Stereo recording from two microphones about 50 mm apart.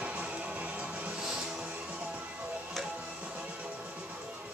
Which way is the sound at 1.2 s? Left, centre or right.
Centre.